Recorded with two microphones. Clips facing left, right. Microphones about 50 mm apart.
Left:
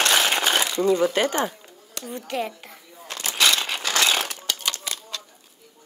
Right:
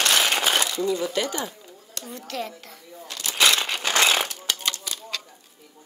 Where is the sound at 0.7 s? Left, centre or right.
Left.